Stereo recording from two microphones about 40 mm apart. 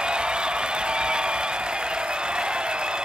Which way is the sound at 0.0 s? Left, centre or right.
Right.